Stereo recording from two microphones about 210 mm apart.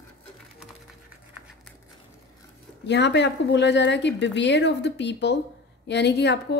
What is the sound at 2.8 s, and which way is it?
A woman's voice, 55° left (ahead or behind).